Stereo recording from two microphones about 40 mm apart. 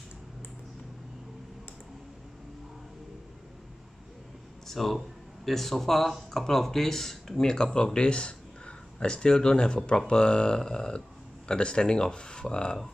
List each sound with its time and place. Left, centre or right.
4.6 s speech: centre; by 12.7 s left